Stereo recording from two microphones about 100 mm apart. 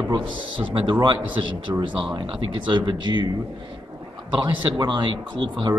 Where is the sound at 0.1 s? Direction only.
50° right (ahead or behind).